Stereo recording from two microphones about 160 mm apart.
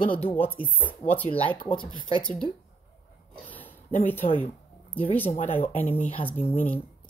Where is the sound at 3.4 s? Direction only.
10° left (ahead or behind).